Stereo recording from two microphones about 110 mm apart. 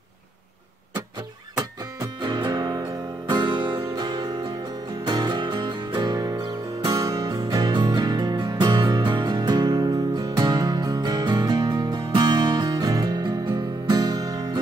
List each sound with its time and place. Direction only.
1.6 s music: 40° right (ahead or behind)